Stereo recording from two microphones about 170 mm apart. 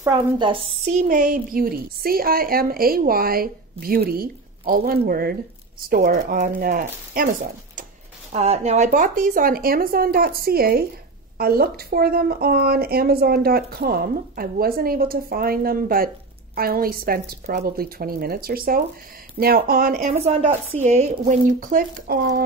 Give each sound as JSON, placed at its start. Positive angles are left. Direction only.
{"t": 0.9, "sound": "a woman's voice", "side_deg": -50}
{"t": 8.3, "sound": "a woman's voice", "side_deg": -40}
{"t": 20.2, "sound": "speech", "side_deg": -40}